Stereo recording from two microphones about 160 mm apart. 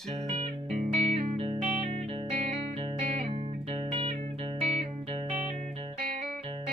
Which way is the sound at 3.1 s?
40° right (ahead or behind).